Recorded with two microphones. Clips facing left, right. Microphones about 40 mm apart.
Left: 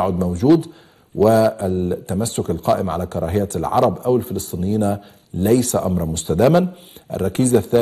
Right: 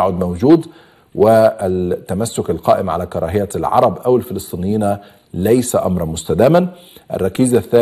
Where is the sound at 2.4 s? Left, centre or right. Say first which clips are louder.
Right 6 dB; centre.